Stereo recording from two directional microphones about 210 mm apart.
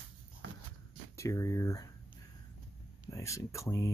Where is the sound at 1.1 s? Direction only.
15° left (ahead or behind).